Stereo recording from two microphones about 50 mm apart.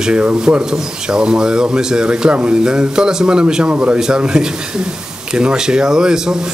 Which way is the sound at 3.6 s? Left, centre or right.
Right.